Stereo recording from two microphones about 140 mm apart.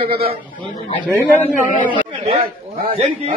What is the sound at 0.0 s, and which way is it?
Speech, 40° right (ahead or behind).